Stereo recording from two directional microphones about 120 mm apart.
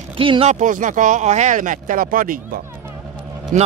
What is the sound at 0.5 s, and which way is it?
Speech, 90° right.